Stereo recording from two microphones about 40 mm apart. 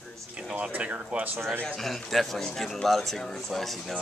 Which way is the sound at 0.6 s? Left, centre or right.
Right.